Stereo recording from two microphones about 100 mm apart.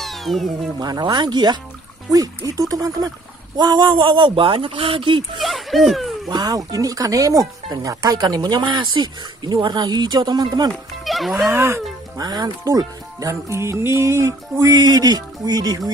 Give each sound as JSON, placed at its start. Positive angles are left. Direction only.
{"t": 0.0, "sound": "cat", "side_deg": 0}
{"t": 0.7, "sound": "speech", "side_deg": -45}
{"t": 5.4, "sound": "a sound", "side_deg": 0}
{"t": 6.2, "sound": "speech", "side_deg": -40}
{"t": 10.7, "sound": "speech", "side_deg": 0}
{"t": 11.4, "sound": "speech", "side_deg": -30}
{"t": 12.2, "sound": "speech", "side_deg": -40}
{"t": 14.8, "sound": "speech", "side_deg": -45}